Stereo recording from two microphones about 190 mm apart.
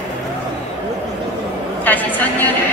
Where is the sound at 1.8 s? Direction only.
10° left (ahead or behind).